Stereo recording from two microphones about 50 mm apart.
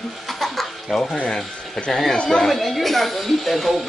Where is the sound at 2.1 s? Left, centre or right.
Centre.